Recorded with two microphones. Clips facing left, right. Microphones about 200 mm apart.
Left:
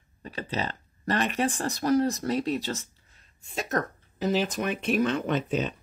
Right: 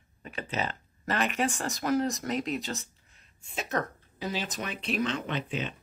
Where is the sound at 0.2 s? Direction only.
35° left (ahead or behind).